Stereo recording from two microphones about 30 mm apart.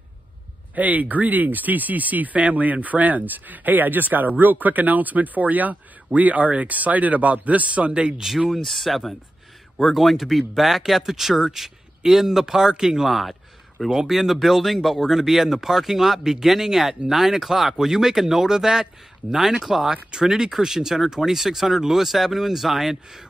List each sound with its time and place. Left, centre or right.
0.7 s speech: right
8.6 s speech: centre
13.0 s a sound: centre
13.9 s speech: centre
15.0 s speech: centre
19.6 s speech: centre
19.9 s speech: right